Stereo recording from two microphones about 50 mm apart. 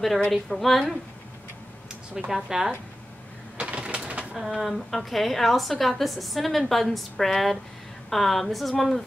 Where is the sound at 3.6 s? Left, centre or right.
Centre.